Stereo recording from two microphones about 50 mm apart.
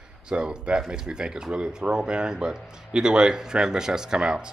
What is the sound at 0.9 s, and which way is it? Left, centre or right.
A man's voice, centre.